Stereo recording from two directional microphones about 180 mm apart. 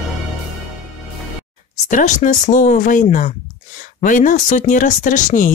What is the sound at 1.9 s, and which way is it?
Speech, 45° left (ahead or behind).